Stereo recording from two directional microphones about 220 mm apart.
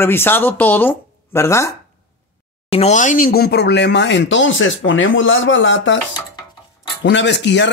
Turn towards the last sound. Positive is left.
turn(degrees=55)  # may be behind; listen again after turning